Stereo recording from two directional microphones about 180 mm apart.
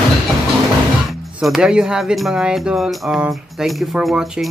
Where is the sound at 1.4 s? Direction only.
Centre (ahead or behind).